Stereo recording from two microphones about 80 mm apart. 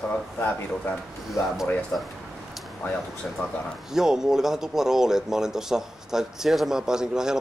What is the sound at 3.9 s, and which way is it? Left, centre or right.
Speech, centre.